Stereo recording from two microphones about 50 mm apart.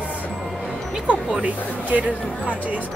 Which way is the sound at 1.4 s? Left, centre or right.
Right.